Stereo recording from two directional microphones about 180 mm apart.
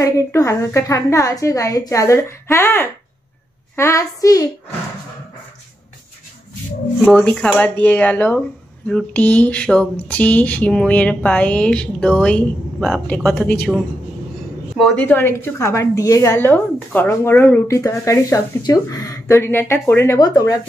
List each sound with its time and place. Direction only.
0.0 s speech: 15° left (ahead or behind)
7.1 s speech: 5° left (ahead or behind)
14.8 s speech: 5° left (ahead or behind); by 20.5 s 20° left (ahead or behind)